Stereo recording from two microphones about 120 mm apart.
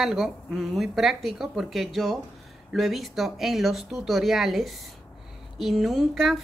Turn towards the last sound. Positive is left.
turn(degrees=0)  # may be behind; listen again after turning